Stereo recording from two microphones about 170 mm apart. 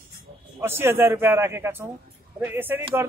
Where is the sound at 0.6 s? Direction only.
15° right (ahead or behind).